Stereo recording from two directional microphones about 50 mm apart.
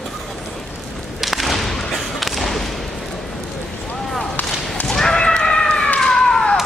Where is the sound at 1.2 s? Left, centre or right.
Centre.